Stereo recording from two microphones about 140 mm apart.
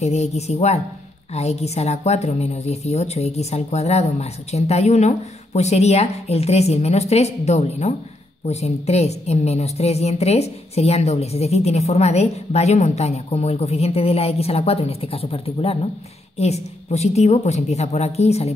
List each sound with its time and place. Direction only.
0.0 s a woman's voice: 50° left (ahead or behind)